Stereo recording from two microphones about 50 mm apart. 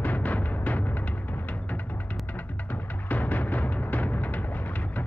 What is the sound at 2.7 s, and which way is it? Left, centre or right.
Music, left.